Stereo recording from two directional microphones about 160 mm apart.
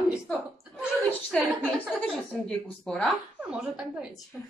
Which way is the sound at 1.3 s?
5° left (ahead or behind).